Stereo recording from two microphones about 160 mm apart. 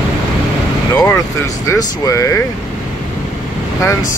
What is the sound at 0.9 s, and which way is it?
Speech, 15° left (ahead or behind).